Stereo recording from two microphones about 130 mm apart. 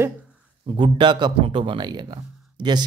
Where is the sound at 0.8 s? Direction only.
35° right (ahead or behind).